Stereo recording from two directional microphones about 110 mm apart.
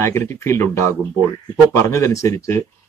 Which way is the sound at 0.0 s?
25° left (ahead or behind).